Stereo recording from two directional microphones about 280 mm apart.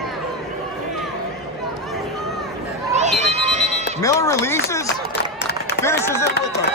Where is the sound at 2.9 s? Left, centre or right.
Right.